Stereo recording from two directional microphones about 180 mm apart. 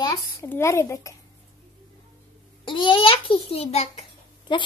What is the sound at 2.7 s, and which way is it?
A child's voice, 25° left (ahead or behind).